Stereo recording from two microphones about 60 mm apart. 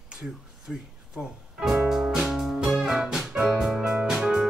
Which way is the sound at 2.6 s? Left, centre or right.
Centre.